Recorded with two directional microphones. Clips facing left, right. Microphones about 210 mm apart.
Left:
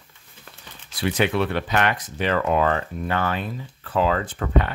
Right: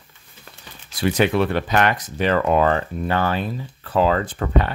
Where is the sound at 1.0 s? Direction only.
40° right (ahead or behind).